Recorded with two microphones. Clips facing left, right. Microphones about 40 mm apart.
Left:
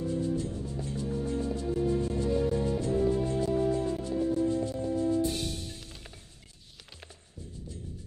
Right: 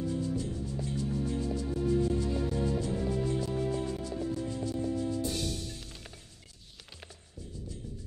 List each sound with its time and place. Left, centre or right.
0.0 s music: left